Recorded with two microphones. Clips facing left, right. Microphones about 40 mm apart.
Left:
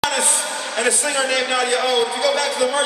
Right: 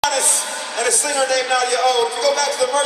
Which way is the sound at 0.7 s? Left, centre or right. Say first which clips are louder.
Right 1 dB; left.